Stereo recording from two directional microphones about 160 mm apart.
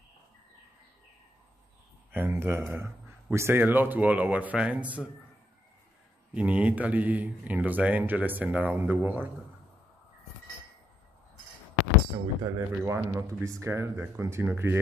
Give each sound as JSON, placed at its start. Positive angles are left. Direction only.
{"t": 2.1, "sound": "speech", "side_deg": -15}
{"t": 6.3, "sound": "speech", "side_deg": -10}
{"t": 12.4, "sound": "speech", "side_deg": -20}